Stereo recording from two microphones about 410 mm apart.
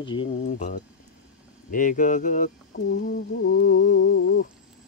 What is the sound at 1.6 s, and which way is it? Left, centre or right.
Humming, centre.